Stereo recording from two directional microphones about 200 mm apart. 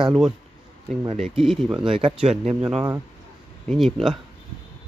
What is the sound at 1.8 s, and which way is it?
Speech, 25° right (ahead or behind).